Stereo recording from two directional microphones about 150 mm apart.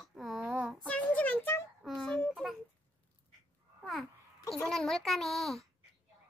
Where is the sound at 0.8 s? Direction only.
10° left (ahead or behind).